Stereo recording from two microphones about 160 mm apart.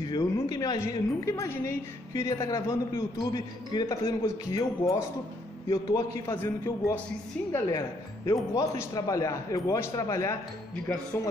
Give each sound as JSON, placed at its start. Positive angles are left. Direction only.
{"t": 0.0, "sound": "a woman's voice", "side_deg": 25}
{"t": 10.9, "sound": "a man's voice", "side_deg": 10}